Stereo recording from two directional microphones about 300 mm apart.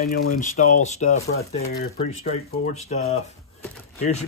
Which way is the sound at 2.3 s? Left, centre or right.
Left.